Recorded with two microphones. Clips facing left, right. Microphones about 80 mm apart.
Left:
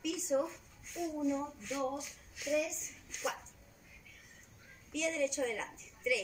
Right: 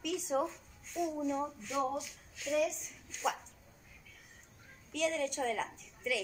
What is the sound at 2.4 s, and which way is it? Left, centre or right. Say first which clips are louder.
Speech: left 1 dB; centre.